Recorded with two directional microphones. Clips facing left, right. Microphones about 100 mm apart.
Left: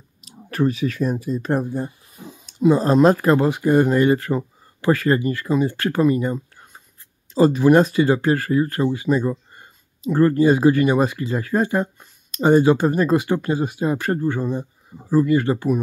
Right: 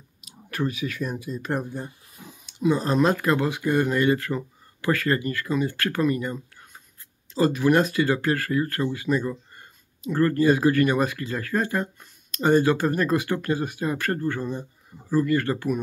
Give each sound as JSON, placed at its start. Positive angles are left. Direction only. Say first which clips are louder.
{"t": 0.2, "sound": "speech", "louder": "left 7 dB", "side_deg": 35}